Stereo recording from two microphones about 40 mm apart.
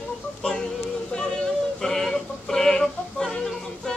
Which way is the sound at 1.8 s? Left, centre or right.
Centre.